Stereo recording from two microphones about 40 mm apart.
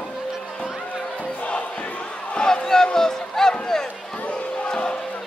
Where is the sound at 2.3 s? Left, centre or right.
Centre.